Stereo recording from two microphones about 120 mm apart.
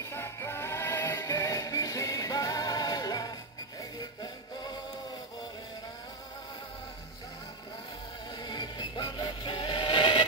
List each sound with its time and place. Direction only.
0.0 s music: 20° left (ahead or behind)
8.4 s music: 35° left (ahead or behind)